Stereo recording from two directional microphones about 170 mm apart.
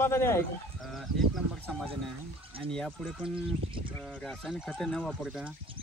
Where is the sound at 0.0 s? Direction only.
15° left (ahead or behind).